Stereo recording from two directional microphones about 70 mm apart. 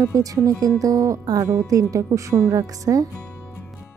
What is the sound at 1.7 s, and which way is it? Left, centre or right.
A woman's voice, right.